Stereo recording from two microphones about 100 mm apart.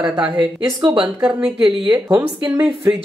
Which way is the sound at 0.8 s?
55° right (ahead or behind).